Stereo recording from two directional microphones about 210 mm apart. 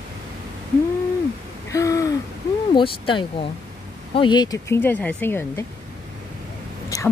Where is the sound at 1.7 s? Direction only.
15° left (ahead or behind).